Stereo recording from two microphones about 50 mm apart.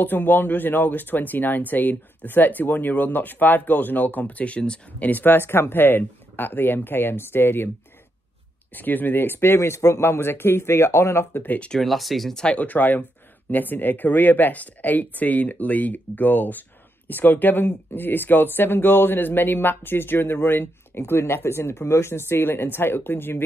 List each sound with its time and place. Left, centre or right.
0.0 s speech: left
8.7 s speech: left
11.8 s speech: centre
12.5 s speech: left
21.0 s speech: left